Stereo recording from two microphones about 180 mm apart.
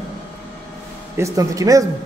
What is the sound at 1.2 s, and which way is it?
Speech, 20° right (ahead or behind).